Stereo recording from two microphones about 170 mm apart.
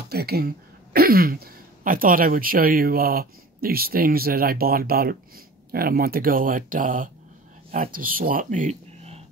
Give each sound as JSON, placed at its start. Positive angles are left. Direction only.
{"t": 0.1, "sound": "speech", "side_deg": -65}